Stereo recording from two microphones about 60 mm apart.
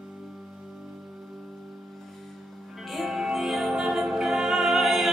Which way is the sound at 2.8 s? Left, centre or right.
Centre.